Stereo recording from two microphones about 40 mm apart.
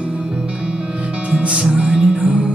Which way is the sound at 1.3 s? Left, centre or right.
Right.